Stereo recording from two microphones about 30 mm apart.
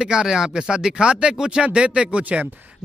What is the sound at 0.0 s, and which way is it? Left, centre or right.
Speech, right.